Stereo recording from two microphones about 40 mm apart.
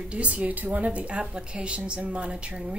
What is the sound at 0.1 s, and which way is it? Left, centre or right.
Speech, right.